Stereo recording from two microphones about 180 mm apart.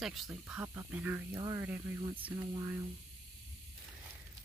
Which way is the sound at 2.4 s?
25° right (ahead or behind).